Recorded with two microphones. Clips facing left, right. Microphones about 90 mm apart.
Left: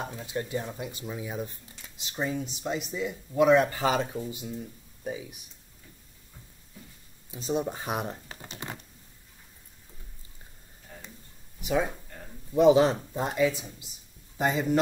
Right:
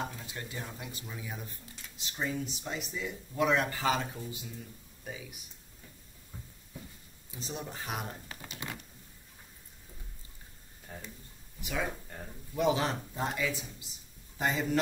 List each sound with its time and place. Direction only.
0.1 s speech: 25° left (ahead or behind)
7.2 s speech: 20° left (ahead or behind)
11.6 s speech: 25° left (ahead or behind)